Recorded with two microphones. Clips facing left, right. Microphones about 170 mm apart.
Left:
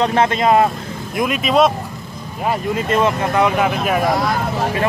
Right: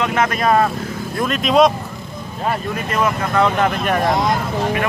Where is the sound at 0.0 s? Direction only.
30° left (ahead or behind).